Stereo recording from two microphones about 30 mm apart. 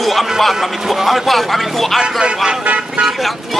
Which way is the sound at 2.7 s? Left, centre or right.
Right.